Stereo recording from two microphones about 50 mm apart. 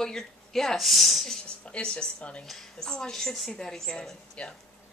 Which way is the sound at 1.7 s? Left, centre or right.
Centre.